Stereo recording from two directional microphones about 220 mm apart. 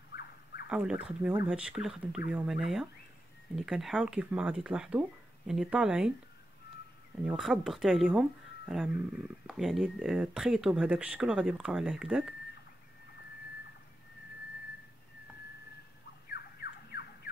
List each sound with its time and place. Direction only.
0.7 s speech: 5° right (ahead or behind)
7.2 s speech: centre (ahead or behind)
16.3 s bird: 45° left (ahead or behind)